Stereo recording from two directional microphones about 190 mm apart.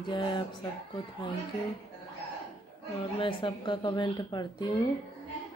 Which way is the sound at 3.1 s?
25° left (ahead or behind).